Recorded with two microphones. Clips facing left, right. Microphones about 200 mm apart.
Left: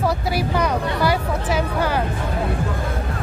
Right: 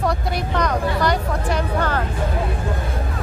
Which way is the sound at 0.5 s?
5° left (ahead or behind).